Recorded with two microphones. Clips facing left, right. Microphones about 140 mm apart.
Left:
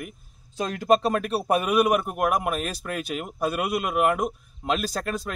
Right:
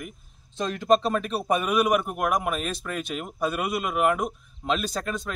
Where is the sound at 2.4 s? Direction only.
45° left (ahead or behind).